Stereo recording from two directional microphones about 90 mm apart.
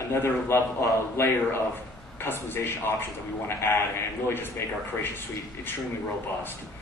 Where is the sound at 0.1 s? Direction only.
30° left (ahead or behind).